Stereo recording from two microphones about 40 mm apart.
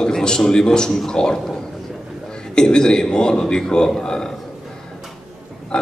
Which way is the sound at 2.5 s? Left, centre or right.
Centre.